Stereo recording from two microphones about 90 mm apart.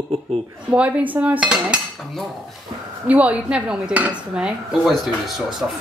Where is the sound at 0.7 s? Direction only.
15° right (ahead or behind).